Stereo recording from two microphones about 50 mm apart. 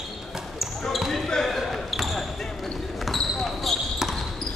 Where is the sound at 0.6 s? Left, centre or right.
Centre.